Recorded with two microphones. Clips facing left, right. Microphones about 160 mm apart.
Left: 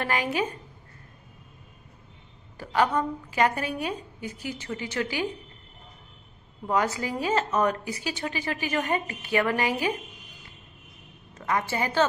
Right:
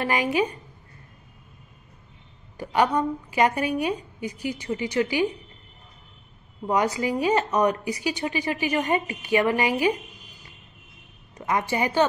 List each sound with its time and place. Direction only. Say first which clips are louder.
0.0 s a woman's voice: right 4 dB; 10° right (ahead or behind)
2.5 s a woman's voice: right 2 dB; 15° right (ahead or behind)
7.0 s a woman's voice: right 4 dB; 15° right (ahead or behind)
11.3 s a woman's voice: right 3 dB; 15° right (ahead or behind)